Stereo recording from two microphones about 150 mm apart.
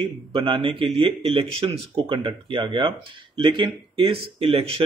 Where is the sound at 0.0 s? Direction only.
35° right (ahead or behind).